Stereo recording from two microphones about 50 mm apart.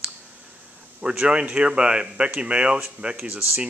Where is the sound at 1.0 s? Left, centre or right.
Centre.